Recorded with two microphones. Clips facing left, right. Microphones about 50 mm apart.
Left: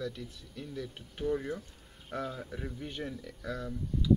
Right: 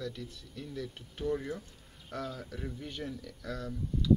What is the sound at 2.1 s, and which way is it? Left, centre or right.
A man's voice, left.